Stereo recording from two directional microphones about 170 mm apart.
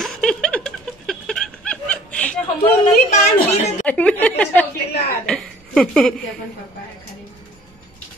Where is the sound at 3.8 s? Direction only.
10° left (ahead or behind).